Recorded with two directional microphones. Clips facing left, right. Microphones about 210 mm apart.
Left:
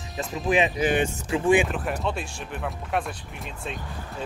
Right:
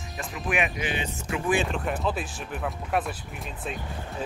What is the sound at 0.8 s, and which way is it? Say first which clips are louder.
Speech: left 8 dB; 50° left (ahead or behind).